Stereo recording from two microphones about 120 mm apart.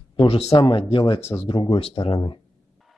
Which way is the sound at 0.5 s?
45° left (ahead or behind).